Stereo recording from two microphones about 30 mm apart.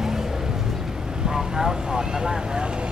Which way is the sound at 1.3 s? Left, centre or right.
Centre.